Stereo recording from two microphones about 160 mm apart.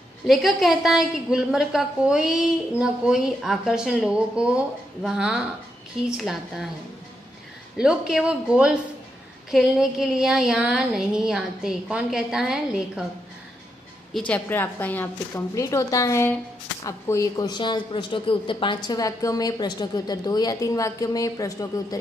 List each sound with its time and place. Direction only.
0.3 s a woman's voice: centre (ahead or behind)
7.7 s a woman's voice: 5° right (ahead or behind)
14.1 s a woman's voice: 10° left (ahead or behind)